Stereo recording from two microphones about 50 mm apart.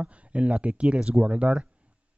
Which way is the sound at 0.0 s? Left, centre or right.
Right.